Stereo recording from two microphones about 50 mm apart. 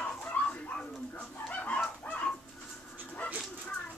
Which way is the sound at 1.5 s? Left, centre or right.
Left.